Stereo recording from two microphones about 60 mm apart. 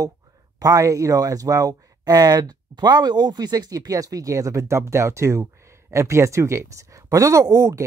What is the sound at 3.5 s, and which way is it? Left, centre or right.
Speech, right.